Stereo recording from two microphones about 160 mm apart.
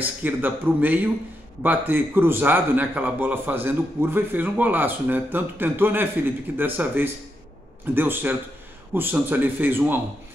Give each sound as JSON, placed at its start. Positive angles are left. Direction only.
{"t": 0.0, "sound": "a man's voice", "side_deg": -10}